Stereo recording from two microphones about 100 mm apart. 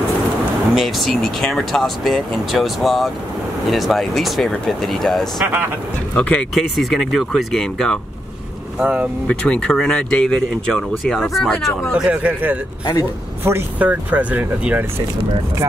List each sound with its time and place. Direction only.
0.7 s speech: centre (ahead or behind)
6.1 s speech: 15° left (ahead or behind)
6.5 s speech: centre (ahead or behind)
8.7 s speech: 10° right (ahead or behind)
9.3 s speech: 10° left (ahead or behind)
11.9 s speech: 15° right (ahead or behind)